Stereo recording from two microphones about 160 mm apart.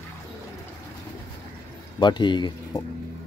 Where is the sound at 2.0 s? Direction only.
30° left (ahead or behind).